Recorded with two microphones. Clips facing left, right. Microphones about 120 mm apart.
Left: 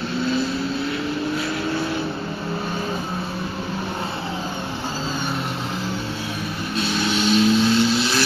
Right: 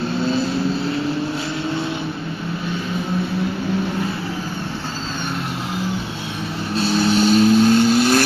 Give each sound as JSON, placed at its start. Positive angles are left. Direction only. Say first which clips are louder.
{"t": 6.7, "sound": "vehicle", "louder": "right 6 dB", "side_deg": -35}